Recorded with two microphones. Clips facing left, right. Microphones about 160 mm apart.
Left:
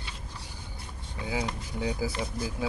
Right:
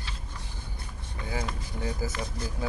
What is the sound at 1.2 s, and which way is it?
Speech, 10° left (ahead or behind).